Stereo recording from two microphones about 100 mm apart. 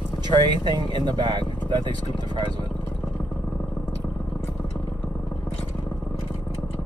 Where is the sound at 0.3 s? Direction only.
50° right (ahead or behind).